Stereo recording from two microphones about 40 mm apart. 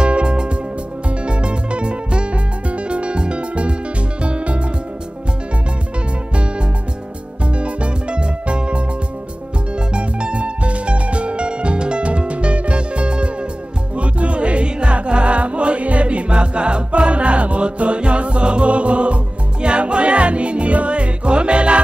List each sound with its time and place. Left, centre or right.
0.0 s music: right
7.5 s music: right
9.9 s music: right